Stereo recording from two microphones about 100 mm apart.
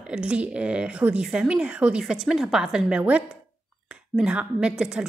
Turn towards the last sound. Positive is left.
turn(degrees=-10)  # may be behind; listen again after turning